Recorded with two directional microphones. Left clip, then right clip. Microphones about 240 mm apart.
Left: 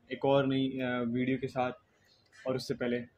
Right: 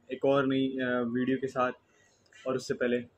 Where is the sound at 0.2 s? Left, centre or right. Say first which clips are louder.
Right 2 dB; left.